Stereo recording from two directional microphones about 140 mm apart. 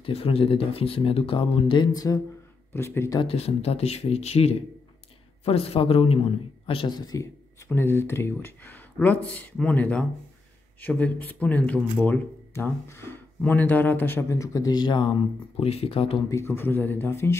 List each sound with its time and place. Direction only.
0.0 s speech: 45° left (ahead or behind); by 3.2 s 20° left (ahead or behind)
3.2 s speech: 45° left (ahead or behind)
16.3 s speech: 20° left (ahead or behind)